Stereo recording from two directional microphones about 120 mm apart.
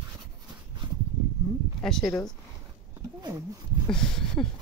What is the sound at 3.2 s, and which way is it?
Speech, 30° right (ahead or behind).